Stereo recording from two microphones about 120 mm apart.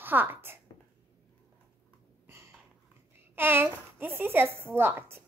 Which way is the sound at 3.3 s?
20° right (ahead or behind).